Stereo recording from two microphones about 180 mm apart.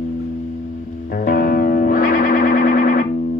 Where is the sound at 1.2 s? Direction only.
50° left (ahead or behind).